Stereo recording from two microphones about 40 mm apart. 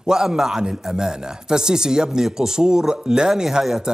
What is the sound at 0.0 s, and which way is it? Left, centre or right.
Speech, centre.